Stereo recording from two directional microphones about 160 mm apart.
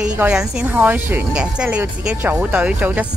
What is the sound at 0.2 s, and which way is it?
Speech, 5° right (ahead or behind).